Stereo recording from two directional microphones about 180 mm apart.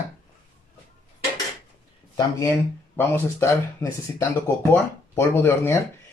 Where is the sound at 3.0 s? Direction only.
15° left (ahead or behind).